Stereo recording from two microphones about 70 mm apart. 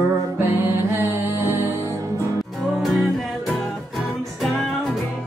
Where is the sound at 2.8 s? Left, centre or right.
Centre.